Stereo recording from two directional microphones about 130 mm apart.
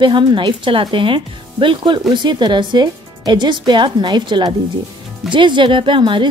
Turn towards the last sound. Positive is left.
turn(degrees=-40)  # may be behind; listen again after turning